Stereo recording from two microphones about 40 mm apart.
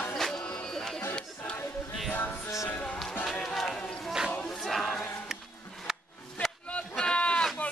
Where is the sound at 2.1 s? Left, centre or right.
Left.